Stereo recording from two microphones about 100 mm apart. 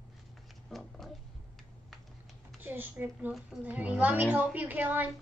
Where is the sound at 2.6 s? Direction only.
20° right (ahead or behind).